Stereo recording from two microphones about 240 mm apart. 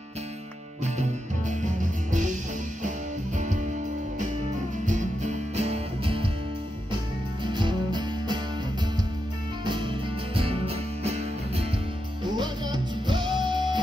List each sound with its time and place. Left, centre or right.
1.5 s music: right
4.8 s music: right
7.4 s music: centre
9.7 s music: right